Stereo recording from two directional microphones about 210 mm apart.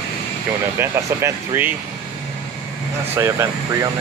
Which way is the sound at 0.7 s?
10° right (ahead or behind).